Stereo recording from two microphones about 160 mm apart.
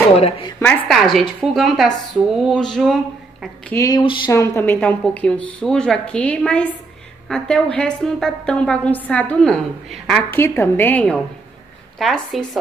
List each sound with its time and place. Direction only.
0.2 s a woman's voice: 35° left (ahead or behind)
0.6 s a woman's voice: 5° left (ahead or behind)
3.7 s speech: 20° left (ahead or behind)
4.0 s a woman's voice: 30° left (ahead or behind)
4.3 s a woman's voice: 15° left (ahead or behind)
10.3 s a woman's voice: 15° left (ahead or behind)